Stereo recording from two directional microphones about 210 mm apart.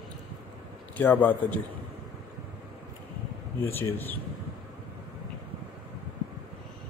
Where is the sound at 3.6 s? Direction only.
10° left (ahead or behind).